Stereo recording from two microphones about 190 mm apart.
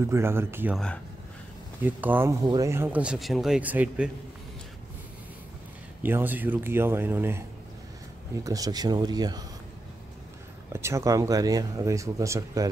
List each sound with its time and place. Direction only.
0.0 s speech: 15° right (ahead or behind)
1.8 s speech: 10° right (ahead or behind)
6.0 s speech: 10° right (ahead or behind)
8.5 s speech: 20° right (ahead or behind)
10.7 s speech: 15° right (ahead or behind)